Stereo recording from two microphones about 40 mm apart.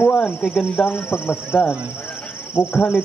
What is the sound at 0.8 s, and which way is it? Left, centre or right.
Speech, left.